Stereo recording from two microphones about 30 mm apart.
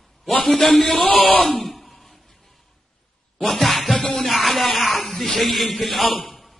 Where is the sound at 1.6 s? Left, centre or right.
Centre.